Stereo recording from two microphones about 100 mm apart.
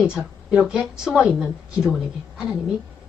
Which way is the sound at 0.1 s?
10° right (ahead or behind).